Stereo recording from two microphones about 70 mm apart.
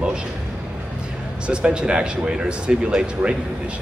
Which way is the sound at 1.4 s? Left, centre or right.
Centre.